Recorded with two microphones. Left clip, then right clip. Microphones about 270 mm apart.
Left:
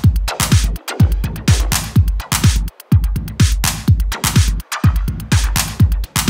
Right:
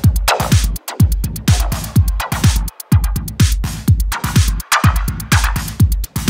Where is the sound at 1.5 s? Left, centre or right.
Centre.